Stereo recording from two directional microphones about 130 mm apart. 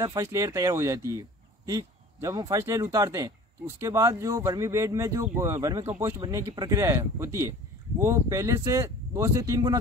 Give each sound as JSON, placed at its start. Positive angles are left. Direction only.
{"t": 0.0, "sound": "speech", "side_deg": -25}